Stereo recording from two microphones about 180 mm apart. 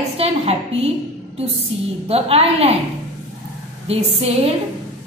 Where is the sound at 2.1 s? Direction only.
35° right (ahead or behind).